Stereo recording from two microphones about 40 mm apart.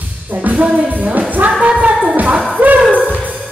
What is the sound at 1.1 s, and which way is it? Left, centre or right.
Music, right.